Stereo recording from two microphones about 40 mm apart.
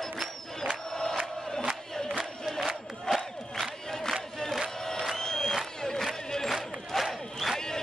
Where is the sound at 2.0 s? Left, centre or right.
Centre.